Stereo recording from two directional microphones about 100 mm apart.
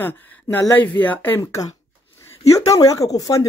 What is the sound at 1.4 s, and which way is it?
Speech, 35° left (ahead or behind).